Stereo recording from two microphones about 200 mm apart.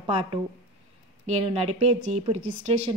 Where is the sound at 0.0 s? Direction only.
25° right (ahead or behind).